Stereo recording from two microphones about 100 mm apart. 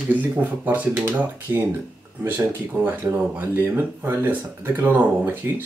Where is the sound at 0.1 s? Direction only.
15° right (ahead or behind).